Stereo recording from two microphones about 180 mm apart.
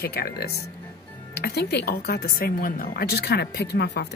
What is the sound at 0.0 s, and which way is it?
Speech, 60° left (ahead or behind).